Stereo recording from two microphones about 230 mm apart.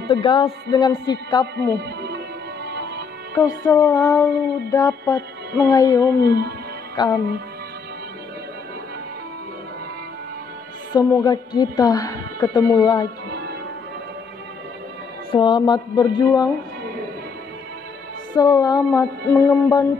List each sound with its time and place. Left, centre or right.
0.1 s speech: left
1.8 s music: right
3.3 s a woman's voice: centre
10.9 s a woman's voice: centre
15.3 s speech: centre
18.3 s a woman's voice: centre